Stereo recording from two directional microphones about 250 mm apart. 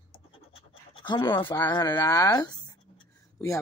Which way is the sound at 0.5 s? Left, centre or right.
Centre.